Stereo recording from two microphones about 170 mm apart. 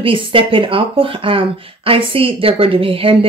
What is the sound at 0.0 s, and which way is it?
Speech, 30° right (ahead or behind).